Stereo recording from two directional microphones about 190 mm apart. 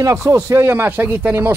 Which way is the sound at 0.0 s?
15° right (ahead or behind).